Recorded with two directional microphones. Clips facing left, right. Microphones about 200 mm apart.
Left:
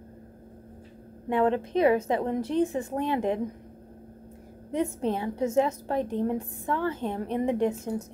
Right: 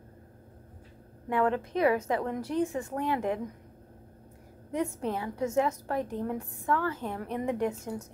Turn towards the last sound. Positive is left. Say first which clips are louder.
# left 4 dB
turn(degrees=25)  # may be behind; listen again after turning